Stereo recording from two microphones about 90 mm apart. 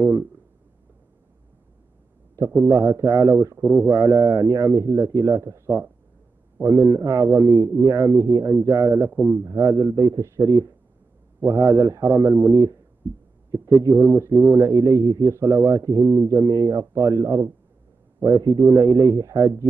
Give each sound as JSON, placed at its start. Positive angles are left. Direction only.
{"t": 2.3, "sound": "a man's voice", "side_deg": -40}